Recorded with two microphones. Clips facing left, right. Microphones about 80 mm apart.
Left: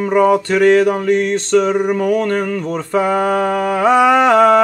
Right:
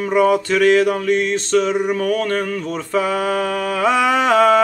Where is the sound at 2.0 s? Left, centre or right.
Centre.